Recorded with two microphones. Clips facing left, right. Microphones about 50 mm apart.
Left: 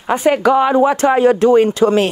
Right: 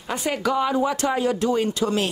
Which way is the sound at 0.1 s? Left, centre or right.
Left.